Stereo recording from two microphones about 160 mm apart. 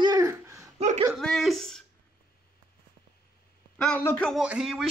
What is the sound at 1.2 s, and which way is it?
Speech, 5° left (ahead or behind).